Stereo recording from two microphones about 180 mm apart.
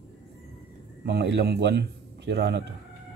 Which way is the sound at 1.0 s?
70° right (ahead or behind).